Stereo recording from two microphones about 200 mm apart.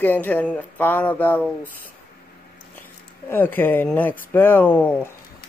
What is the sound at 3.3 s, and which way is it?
Speech, 10° left (ahead or behind).